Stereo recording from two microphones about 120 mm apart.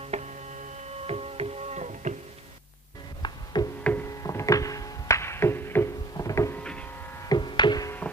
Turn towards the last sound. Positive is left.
turn(degrees=35)  # may be behind; listen again after turning